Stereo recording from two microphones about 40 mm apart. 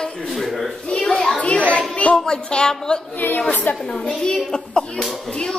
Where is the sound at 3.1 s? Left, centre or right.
Left.